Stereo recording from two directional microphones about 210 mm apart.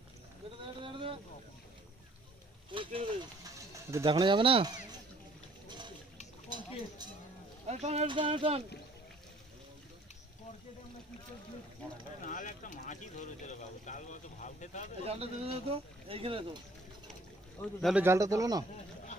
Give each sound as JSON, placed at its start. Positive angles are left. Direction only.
{"t": 0.8, "sound": "vehicle", "side_deg": -25}
{"t": 2.7, "sound": "speech", "side_deg": -25}
{"t": 3.5, "sound": "speech", "side_deg": -15}
{"t": 7.6, "sound": "speech", "side_deg": -30}
{"t": 12.2, "sound": "speech", "side_deg": 40}
{"t": 15.0, "sound": "speech", "side_deg": -30}
{"t": 17.7, "sound": "speech", "side_deg": 0}
{"t": 18.0, "sound": "speech", "side_deg": -15}